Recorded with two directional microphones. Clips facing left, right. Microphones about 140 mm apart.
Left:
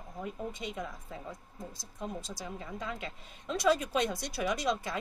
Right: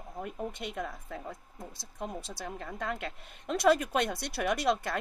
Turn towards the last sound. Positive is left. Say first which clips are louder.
# right 3 dB
turn(degrees=-60)  # may be behind; listen again after turning